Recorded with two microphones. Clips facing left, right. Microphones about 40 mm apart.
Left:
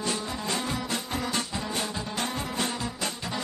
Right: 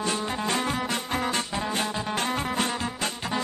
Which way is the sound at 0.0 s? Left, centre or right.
Right.